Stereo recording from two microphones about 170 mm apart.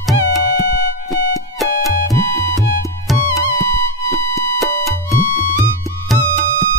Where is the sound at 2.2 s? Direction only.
15° left (ahead or behind).